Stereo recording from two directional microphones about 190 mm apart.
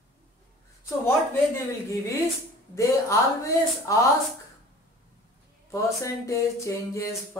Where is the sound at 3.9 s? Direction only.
15° left (ahead or behind).